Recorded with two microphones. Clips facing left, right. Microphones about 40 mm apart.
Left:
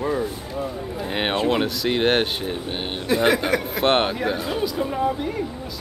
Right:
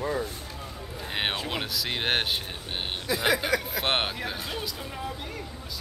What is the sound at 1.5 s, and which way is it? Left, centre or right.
Speech, centre.